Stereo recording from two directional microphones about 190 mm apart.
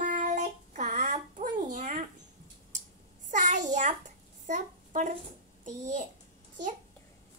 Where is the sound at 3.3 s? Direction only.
40° right (ahead or behind).